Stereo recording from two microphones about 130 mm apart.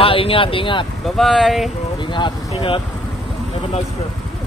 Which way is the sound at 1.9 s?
35° left (ahead or behind).